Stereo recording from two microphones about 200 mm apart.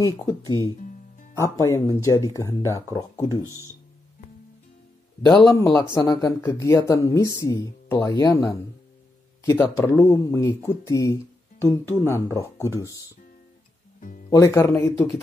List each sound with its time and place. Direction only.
0.0 s speech: 20° left (ahead or behind)
5.5 s speech: 15° left (ahead or behind)
13.9 s music: 40° left (ahead or behind)
14.3 s speech: 15° left (ahead or behind)